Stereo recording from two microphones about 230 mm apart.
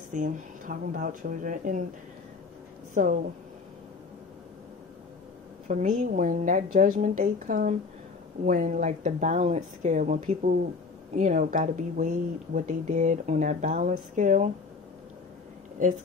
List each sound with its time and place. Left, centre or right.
0.1 s speech: right
2.9 s speech: right
5.7 s speech: right